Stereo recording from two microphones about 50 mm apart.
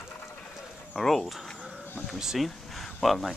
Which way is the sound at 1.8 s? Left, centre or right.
Left.